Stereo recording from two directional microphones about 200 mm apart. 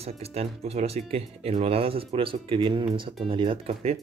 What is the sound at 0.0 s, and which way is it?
Speech, 30° right (ahead or behind).